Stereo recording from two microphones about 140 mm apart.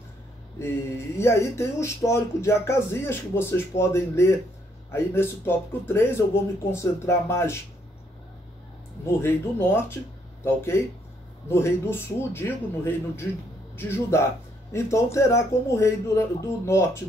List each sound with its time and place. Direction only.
0.6 s speech: 20° left (ahead or behind)
9.2 s speech: 15° left (ahead or behind)